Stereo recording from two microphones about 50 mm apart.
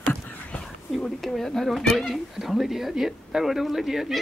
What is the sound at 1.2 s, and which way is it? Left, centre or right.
Speech, centre.